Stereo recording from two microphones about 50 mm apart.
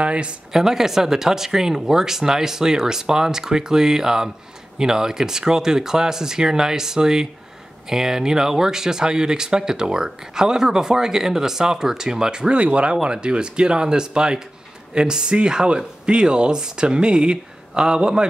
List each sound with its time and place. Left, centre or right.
0.0 s speech: right
0.5 s speech: centre